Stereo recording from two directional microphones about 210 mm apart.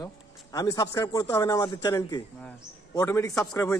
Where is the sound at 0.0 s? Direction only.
15° left (ahead or behind).